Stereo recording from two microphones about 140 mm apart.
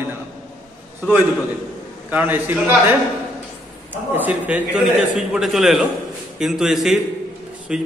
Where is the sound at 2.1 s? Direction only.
15° right (ahead or behind).